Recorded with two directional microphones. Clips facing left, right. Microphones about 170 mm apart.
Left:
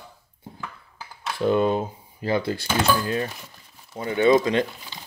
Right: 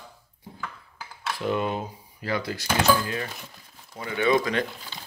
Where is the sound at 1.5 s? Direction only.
30° left (ahead or behind).